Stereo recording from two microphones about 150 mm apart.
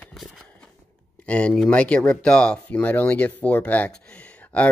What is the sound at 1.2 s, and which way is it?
Speech, 10° left (ahead or behind).